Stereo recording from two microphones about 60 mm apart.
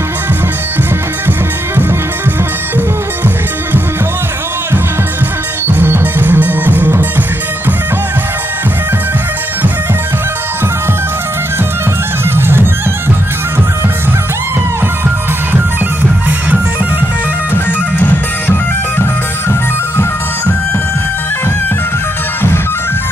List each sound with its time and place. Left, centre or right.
5.7 s music: right
12.4 s music: right
17.9 s music: left